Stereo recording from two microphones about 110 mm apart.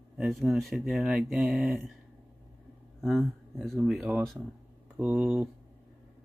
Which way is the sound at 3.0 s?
5° left (ahead or behind).